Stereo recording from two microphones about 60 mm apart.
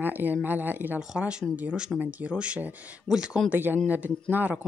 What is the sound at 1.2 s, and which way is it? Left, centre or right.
Speech, centre.